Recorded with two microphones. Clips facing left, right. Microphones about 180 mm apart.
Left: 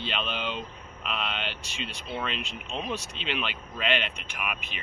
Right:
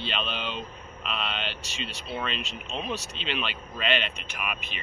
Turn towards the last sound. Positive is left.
turn(degrees=10)  # may be behind; listen again after turning